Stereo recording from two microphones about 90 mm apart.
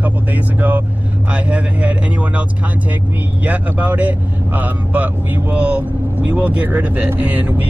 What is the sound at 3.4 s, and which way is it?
Speech, 15° right (ahead or behind).